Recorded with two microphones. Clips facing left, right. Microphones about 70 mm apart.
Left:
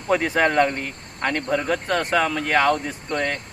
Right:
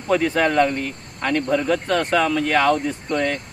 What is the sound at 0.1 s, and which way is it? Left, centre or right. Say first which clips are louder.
Speech: right 1 dB; centre.